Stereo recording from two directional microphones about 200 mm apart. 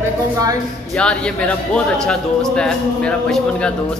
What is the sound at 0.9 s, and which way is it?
A man's voice, 5° left (ahead or behind).